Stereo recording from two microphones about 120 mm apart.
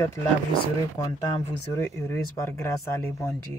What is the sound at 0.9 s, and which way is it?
Speech, 35° left (ahead or behind).